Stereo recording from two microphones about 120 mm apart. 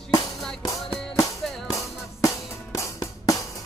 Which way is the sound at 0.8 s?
30° left (ahead or behind).